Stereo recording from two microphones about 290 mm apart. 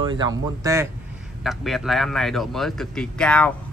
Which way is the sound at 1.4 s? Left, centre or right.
Centre.